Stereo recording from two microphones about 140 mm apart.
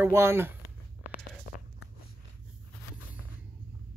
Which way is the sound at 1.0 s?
70° left (ahead or behind).